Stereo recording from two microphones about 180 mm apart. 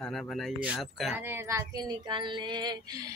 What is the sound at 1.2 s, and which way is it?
Female singing, 10° right (ahead or behind).